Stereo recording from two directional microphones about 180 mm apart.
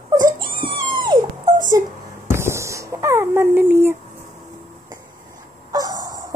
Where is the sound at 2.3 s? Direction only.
15° right (ahead or behind).